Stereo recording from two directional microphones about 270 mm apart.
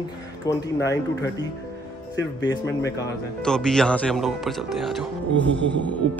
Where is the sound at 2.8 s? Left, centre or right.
Centre.